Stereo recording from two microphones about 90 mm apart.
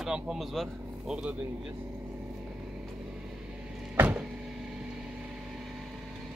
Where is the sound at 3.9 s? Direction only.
25° right (ahead or behind).